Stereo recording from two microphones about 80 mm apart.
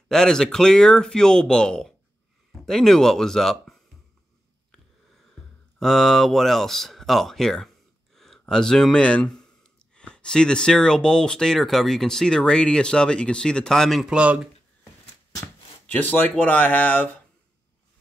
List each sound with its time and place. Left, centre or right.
0.1 s speech: centre
5.1 s speech: centre
14.0 s speech: centre
15.9 s speech: centre